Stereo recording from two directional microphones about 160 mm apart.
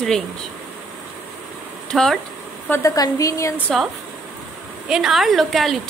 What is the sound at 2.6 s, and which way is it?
Speech, 15° left (ahead or behind).